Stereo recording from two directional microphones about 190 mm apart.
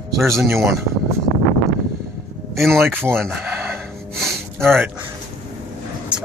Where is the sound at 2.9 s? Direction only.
10° right (ahead or behind).